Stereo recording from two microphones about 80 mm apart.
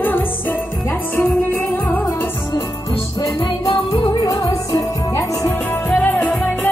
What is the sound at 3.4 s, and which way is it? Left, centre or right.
Music, left.